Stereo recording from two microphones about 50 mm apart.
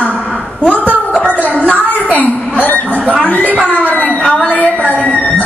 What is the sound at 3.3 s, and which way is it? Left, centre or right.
Speech, left.